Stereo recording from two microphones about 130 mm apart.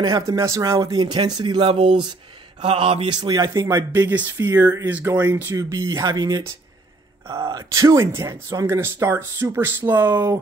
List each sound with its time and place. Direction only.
0.0 s speech: 30° right (ahead or behind)
2.6 s mantra: 45° right (ahead or behind)
3.2 s speech: 30° right (ahead or behind)
4.1 s speech: 15° right (ahead or behind)